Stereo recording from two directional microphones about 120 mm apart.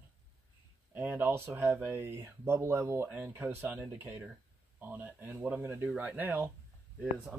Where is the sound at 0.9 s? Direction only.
15° right (ahead or behind).